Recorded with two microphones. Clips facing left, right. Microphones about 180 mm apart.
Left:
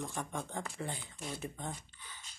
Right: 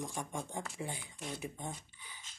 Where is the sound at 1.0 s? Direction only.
5° left (ahead or behind).